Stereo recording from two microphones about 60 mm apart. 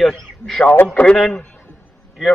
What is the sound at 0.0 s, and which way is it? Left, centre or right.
A man's voice, centre.